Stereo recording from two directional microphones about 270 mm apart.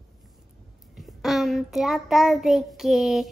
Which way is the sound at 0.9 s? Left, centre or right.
Centre.